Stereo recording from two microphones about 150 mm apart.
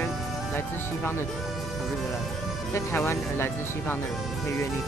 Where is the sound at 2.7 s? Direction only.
15° left (ahead or behind).